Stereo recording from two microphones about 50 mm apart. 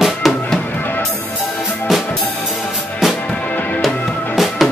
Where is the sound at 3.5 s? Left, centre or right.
Left.